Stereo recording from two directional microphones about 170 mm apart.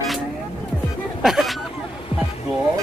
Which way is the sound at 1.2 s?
Centre (ahead or behind).